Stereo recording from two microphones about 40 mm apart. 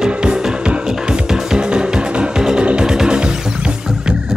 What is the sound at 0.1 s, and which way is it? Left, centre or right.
Music, right.